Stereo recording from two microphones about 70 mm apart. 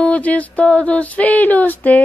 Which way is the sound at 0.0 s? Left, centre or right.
Centre.